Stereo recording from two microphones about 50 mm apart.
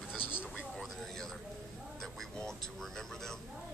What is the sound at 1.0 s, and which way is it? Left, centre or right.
A man's voice, centre.